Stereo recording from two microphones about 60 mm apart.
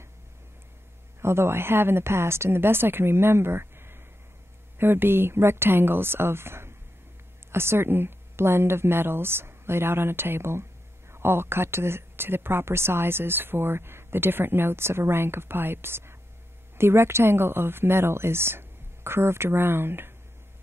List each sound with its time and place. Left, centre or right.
1.2 s speech: right